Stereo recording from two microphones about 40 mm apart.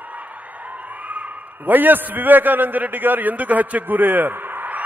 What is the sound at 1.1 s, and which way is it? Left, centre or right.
A man's voice, right.